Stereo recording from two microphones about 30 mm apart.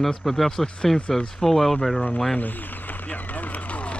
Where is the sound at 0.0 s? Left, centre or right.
Centre.